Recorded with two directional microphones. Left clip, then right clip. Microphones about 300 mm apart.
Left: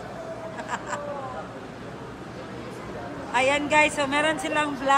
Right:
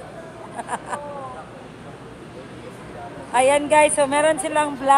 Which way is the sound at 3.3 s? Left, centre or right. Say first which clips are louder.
Right 5 dB; centre.